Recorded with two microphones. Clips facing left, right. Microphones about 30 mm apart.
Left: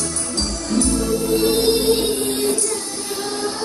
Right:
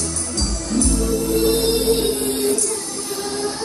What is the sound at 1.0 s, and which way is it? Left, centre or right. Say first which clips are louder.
Music: even; left.